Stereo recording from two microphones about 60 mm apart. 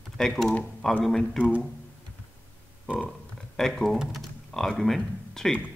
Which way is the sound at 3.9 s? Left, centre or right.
Centre.